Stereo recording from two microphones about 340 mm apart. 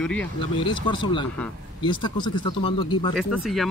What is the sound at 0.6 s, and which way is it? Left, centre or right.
Speech, centre.